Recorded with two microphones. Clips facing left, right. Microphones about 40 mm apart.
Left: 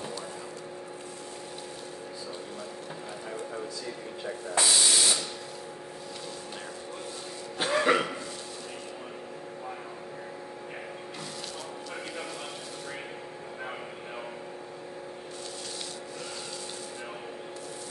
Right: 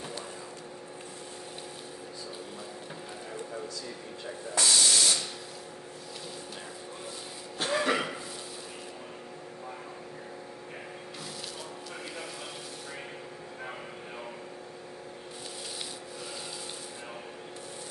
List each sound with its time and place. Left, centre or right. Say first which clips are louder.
4.6 s spray: even; centre
7.5 s cough: left 3 dB; centre